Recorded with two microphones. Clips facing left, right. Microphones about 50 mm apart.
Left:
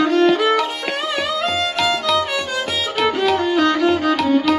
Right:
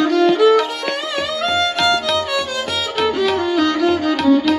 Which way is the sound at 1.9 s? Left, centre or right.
Centre.